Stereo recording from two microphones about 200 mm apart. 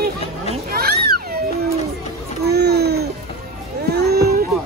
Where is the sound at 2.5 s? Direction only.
55° right (ahead or behind).